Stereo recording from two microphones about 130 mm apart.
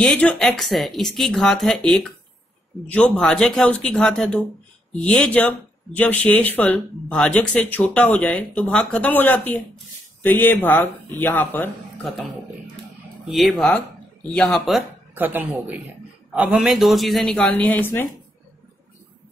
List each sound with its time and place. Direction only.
0.0 s speech: 5° left (ahead or behind)
13.3 s speech: centre (ahead or behind)
15.1 s speech: 15° right (ahead or behind); by 18.0 s 15° left (ahead or behind)